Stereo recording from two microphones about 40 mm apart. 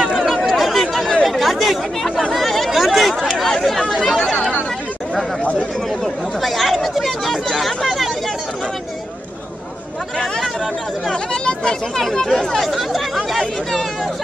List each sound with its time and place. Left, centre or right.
0.0 s chatter: centre
5.4 s chatter: left
6.4 s chatter: centre
12.0 s speech: centre